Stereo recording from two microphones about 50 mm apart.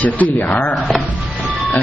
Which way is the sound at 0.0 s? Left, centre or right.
Left.